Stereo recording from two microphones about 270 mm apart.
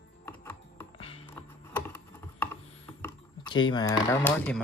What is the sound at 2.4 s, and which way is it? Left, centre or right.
Typing, centre.